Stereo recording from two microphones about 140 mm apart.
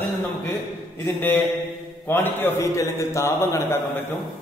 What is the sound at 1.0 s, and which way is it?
A man's voice, 15° left (ahead or behind).